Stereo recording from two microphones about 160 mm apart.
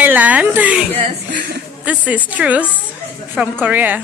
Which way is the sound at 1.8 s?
10° right (ahead or behind).